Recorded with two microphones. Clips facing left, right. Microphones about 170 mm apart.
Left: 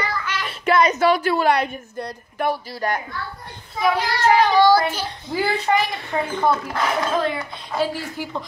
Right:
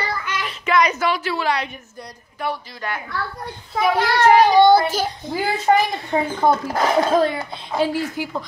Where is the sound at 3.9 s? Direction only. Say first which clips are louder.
Right 5 dB; 55° right (ahead or behind).